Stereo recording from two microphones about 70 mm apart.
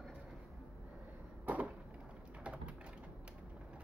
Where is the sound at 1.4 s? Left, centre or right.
Right.